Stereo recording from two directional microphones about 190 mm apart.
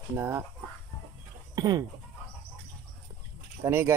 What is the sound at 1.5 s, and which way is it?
Speech, 20° right (ahead or behind).